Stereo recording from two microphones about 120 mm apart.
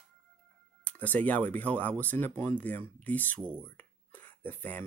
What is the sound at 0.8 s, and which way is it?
Speech, 15° left (ahead or behind).